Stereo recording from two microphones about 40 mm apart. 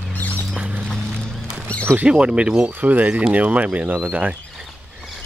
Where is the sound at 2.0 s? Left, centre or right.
Right.